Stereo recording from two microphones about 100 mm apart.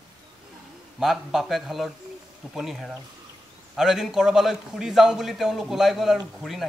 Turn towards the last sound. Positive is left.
turn(degrees=0)  # may be behind; listen again after turning